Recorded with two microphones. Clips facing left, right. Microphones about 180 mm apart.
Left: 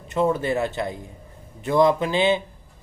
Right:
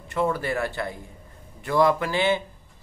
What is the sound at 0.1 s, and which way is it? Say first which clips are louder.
Speech: left 3 dB; 20° left (ahead or behind).